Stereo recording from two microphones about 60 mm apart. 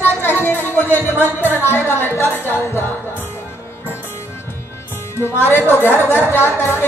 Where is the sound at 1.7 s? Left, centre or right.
Left.